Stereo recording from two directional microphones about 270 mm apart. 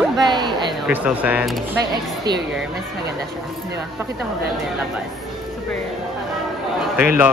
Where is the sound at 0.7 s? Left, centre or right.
Centre.